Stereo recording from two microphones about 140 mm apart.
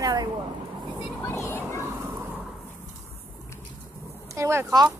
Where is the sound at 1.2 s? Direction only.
20° left (ahead or behind).